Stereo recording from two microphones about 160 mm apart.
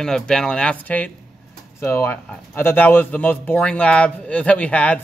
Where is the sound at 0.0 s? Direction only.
5° left (ahead or behind).